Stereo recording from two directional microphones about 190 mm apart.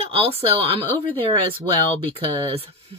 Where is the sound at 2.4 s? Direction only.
30° right (ahead or behind).